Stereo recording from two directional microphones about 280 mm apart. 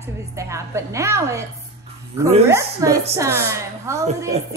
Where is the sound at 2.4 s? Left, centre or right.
Centre.